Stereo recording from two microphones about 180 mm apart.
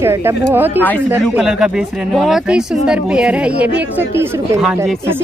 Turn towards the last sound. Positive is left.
turn(degrees=-10)  # may be behind; listen again after turning